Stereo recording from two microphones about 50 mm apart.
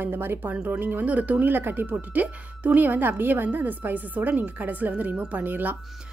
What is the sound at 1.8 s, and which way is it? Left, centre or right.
Speech, right.